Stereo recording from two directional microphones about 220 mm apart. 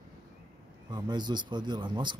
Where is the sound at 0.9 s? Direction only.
20° right (ahead or behind).